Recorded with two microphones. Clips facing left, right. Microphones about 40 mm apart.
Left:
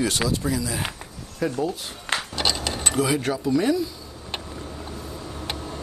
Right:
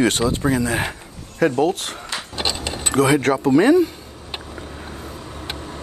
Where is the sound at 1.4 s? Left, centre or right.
Right.